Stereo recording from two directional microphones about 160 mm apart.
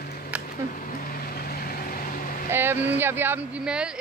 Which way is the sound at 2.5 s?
15° right (ahead or behind).